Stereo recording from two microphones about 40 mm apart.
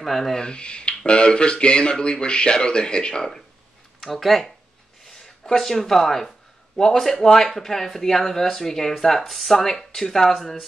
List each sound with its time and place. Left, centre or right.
0.0 s speech: centre
0.4 s speech: left
4.0 s speech: centre